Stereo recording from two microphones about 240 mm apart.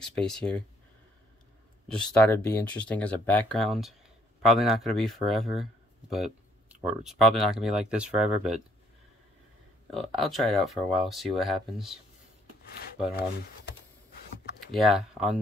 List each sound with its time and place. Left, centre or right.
0.0 s speech: centre
1.9 s speech: centre
9.8 s speech: centre
14.7 s speech: centre